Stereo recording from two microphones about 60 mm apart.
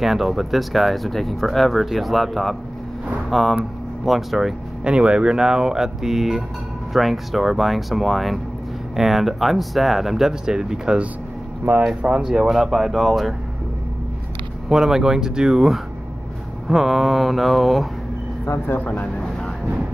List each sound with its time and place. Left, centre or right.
0.0 s speech: centre
4.8 s speech: centre
14.7 s speech: centre
18.8 s speech: left